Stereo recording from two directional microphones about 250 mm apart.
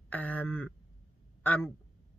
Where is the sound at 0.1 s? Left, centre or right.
Centre.